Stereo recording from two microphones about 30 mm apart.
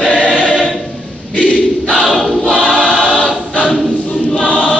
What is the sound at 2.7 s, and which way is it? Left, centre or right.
Choir, right.